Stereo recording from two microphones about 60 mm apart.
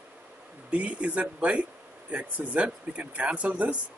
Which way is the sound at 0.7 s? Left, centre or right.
Right.